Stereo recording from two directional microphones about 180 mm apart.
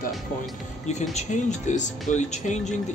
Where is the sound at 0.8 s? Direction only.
40° left (ahead or behind).